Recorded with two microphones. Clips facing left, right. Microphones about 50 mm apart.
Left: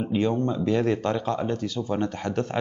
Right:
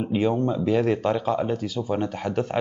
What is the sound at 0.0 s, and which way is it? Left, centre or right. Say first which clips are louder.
Speech: right 1 dB; centre.